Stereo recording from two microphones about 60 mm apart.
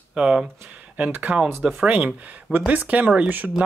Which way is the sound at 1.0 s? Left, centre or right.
Right.